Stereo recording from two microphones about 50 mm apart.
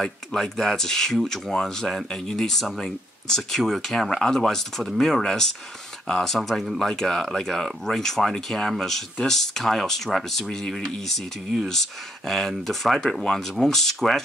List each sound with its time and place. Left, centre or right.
0.0 s speech: centre